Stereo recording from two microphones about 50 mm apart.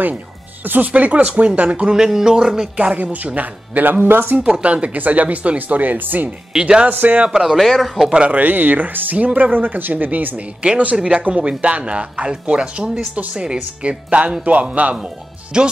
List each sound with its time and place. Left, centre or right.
0.7 s speech: right
2.0 s speech: centre
2.9 s speech: right
4.5 s speech: centre; by 6.3 s right
6.6 s speech: right
6.9 s speech: right
7.2 s speech: centre
7.5 s speech: centre
8.1 s speech: right
10.3 s speech: right
15.5 s speech: centre